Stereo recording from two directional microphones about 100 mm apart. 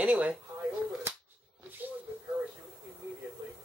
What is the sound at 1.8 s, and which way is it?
Snake, 15° right (ahead or behind).